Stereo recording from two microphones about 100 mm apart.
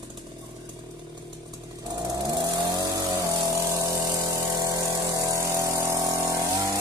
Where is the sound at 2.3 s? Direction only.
45° right (ahead or behind).